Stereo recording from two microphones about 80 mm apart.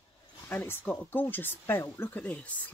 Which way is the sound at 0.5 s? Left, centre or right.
Left.